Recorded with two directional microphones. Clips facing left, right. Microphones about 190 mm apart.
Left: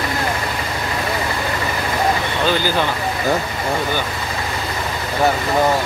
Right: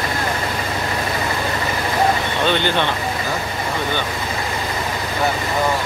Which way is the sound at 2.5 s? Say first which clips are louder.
Even; 5° left (ahead or behind).